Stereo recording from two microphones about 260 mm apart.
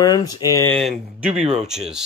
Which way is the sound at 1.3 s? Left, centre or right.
Right.